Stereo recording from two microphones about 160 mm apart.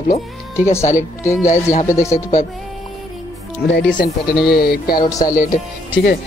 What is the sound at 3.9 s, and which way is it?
Speech, 85° left.